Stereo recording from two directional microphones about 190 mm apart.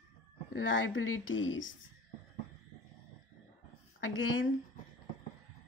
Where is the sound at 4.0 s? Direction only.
90° left.